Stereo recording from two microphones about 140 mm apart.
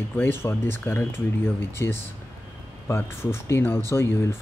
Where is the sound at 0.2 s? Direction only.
15° left (ahead or behind).